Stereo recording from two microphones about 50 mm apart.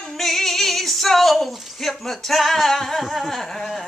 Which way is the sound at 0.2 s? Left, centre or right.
Centre.